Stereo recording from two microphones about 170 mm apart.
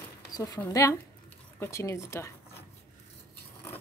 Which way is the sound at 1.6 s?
15° left (ahead or behind).